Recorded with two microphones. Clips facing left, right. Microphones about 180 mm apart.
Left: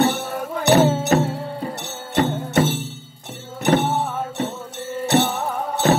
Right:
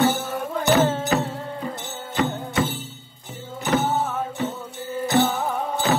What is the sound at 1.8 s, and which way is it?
Music, 75° left (ahead or behind).